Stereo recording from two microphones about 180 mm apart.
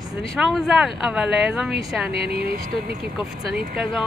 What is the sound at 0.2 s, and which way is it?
Speech, 5° left (ahead or behind).